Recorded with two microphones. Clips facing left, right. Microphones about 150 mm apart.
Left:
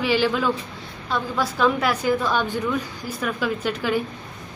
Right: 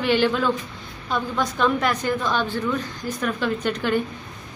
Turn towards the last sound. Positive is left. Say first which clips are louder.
# right 1 dB
turn(degrees=5)  # may be behind; listen again after turning